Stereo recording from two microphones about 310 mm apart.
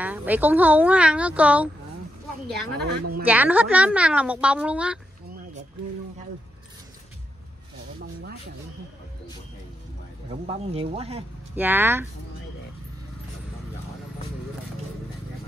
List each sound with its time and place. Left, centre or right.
0.0 s speech: centre
2.7 s speech: right
3.3 s speech: centre
8.0 s a sound: right
10.4 s speech: centre
11.5 s speech: centre